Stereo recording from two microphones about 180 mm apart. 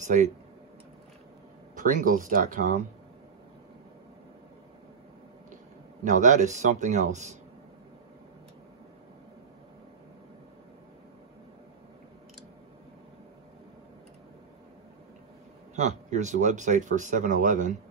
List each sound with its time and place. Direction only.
0.0 s speech: 40° right (ahead or behind)
1.8 s speech: 45° right (ahead or behind)
6.0 s speech: 45° right (ahead or behind)
15.7 s speech: 40° right (ahead or behind)